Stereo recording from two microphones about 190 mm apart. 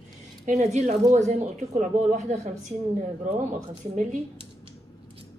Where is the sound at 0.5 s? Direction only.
40° right (ahead or behind).